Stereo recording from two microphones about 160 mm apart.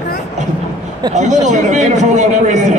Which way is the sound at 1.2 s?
50° right (ahead or behind).